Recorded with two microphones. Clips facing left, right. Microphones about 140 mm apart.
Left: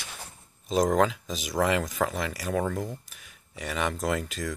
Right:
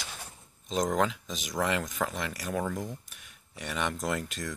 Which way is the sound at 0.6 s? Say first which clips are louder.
Left 5 dB; 5° left (ahead or behind).